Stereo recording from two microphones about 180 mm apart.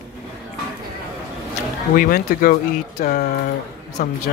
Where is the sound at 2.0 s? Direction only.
55° left (ahead or behind).